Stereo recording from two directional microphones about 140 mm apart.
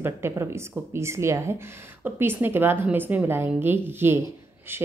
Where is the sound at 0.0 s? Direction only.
20° right (ahead or behind).